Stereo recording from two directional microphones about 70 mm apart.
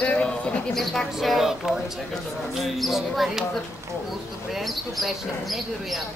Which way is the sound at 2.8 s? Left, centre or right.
Centre.